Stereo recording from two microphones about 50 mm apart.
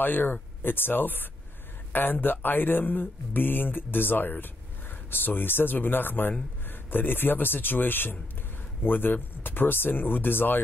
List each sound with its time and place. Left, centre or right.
0.0 s speech: left